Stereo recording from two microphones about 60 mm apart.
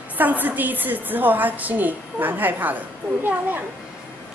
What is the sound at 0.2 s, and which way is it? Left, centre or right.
A woman's voice, right.